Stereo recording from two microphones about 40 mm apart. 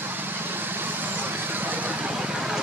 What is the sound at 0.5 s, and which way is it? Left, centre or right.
Vehicle, right.